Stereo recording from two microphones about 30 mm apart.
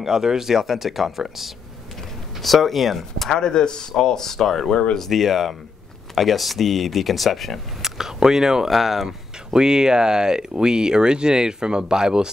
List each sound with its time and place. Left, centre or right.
0.0 s speech: centre
3.3 s speech: left
5.1 s speech: centre
7.8 s speech: centre
8.6 s speech: centre
9.5 s speech: right